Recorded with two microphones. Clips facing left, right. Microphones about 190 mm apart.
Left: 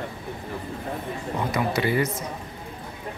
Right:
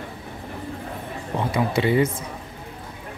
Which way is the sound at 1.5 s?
25° right (ahead or behind).